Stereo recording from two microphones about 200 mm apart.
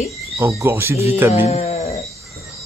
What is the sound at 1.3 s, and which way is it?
Speech, 30° left (ahead or behind).